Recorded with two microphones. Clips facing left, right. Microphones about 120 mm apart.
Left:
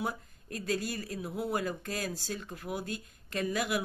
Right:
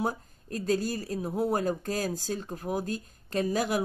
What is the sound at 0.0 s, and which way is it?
Speech, 35° right (ahead or behind).